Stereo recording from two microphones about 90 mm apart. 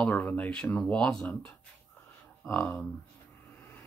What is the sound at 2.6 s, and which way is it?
Speech, 5° left (ahead or behind).